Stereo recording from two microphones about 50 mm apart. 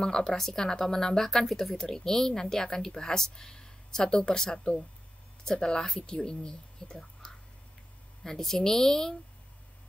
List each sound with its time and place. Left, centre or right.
0.0 s speech: centre
7.0 s whispering: centre
8.2 s speech: centre